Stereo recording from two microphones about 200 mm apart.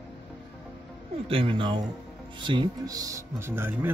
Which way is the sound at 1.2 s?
25° right (ahead or behind).